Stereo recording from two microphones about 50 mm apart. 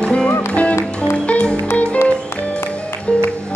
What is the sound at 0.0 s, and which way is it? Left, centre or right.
Music, left.